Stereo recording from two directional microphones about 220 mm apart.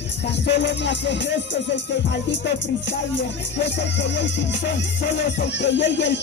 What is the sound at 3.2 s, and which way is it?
Music, 50° left (ahead or behind).